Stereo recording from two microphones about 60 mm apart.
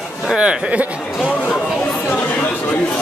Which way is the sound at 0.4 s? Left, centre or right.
Centre.